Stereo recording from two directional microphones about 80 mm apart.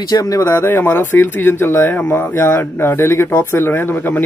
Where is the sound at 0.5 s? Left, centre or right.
Left.